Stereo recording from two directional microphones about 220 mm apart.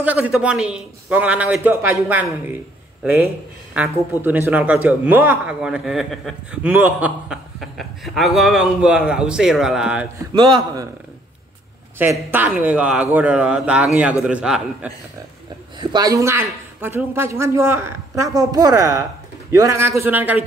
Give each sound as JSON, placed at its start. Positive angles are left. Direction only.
{"t": 0.0, "sound": "a woman's voice", "side_deg": -5}
{"t": 10.3, "sound": "a man's voice", "side_deg": -20}
{"t": 12.0, "sound": "a man's voice", "side_deg": -10}
{"t": 15.8, "sound": "a woman's voice", "side_deg": -20}